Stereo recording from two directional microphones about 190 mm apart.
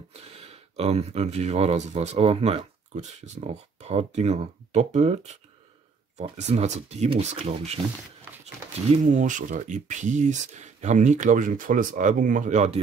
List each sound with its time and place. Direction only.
0.1 s speech: 30° right (ahead or behind)
8.9 s speech: 40° right (ahead or behind)